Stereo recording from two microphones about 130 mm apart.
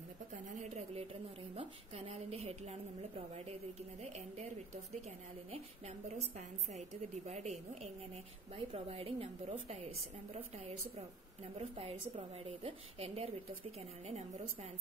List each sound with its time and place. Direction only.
0.5 s a sound: 65° right (ahead or behind)
1.5 s a woman's voice: 50° right (ahead or behind)
6.0 s a woman's voice: 60° right (ahead or behind)
8.5 s a woman's voice: 45° right (ahead or behind)
11.5 s a woman's voice: 50° right (ahead or behind)